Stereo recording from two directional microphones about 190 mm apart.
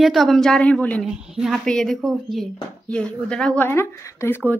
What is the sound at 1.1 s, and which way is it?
A woman's voice, 5° right (ahead or behind).